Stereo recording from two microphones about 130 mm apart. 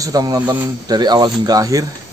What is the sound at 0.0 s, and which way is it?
Speech, 30° right (ahead or behind).